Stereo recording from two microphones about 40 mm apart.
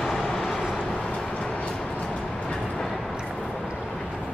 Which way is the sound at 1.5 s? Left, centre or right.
Left.